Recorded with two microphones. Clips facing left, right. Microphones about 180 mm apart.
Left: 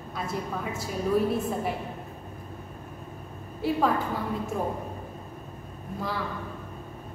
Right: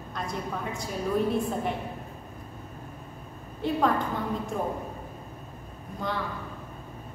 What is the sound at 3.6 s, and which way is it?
Speech, 5° left (ahead or behind).